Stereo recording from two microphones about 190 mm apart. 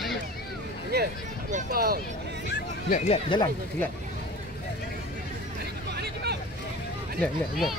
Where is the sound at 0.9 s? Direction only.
60° right (ahead or behind).